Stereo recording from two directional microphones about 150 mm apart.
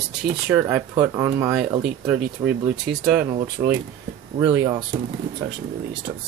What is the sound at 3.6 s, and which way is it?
Speech, 30° right (ahead or behind).